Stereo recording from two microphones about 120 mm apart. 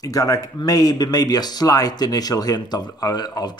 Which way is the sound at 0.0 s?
30° left (ahead or behind).